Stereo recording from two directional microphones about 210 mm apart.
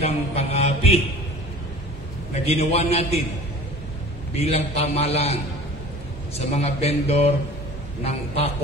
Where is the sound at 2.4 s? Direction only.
30° left (ahead or behind).